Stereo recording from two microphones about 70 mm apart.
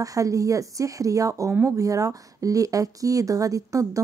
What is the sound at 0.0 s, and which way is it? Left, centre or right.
Speech, right.